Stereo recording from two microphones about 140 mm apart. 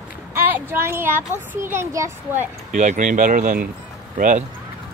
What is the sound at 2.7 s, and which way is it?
Speech, 60° right (ahead or behind).